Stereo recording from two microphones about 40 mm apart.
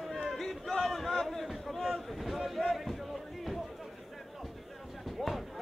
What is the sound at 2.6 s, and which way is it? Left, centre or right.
Music, centre.